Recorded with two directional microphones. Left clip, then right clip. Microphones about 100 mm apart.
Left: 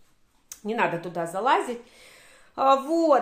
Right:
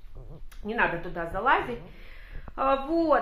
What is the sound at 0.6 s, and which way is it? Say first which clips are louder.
Speech: left 1 dB; 25° left (ahead or behind).